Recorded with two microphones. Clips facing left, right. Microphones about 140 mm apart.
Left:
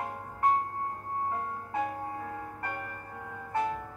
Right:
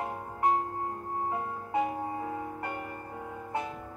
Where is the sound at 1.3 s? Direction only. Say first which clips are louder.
Right 2 dB; 15° right (ahead or behind).